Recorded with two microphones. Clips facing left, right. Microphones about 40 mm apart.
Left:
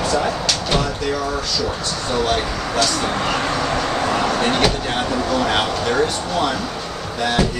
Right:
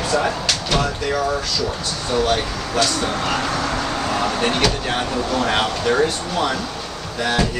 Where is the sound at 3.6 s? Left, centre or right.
Left.